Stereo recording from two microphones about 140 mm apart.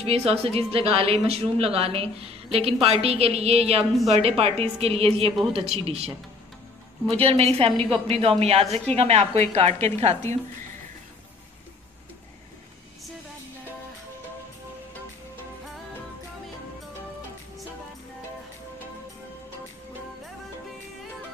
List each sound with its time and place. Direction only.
0.0 s a woman's voice: 45° right (ahead or behind)